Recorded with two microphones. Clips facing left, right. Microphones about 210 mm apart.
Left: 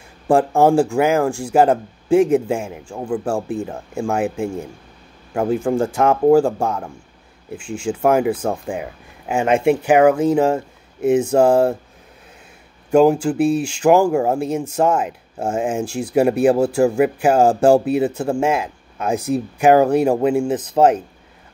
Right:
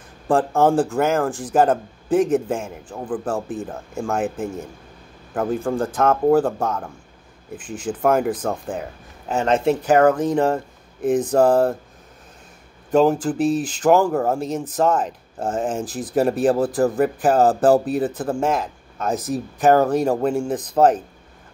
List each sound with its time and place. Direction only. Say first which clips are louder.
0.3 s speech: left 3 dB; 15° left (ahead or behind)
12.9 s speech: left 3 dB; 10° left (ahead or behind)